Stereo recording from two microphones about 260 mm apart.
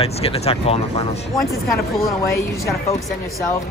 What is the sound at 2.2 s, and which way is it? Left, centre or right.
Speech, centre.